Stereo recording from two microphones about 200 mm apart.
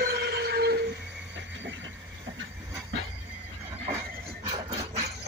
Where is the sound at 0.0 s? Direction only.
55° right (ahead or behind).